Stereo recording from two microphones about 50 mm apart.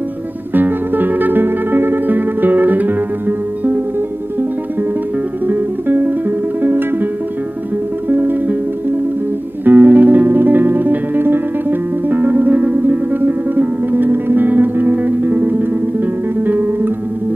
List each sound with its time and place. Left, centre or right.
0.6 s music: right
5.5 s music: right
8.1 s music: right